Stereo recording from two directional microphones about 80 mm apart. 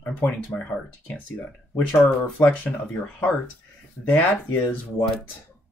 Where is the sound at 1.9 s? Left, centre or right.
Centre.